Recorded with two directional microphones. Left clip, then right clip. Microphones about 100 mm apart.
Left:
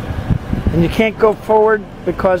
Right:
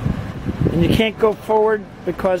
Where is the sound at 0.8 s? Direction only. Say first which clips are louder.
Left 3 dB; 40° right (ahead or behind).